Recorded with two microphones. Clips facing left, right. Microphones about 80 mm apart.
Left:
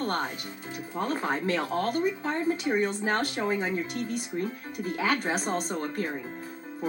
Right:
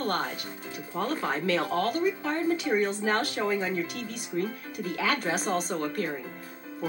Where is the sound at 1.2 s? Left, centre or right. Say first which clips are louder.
Right 1 dB; left.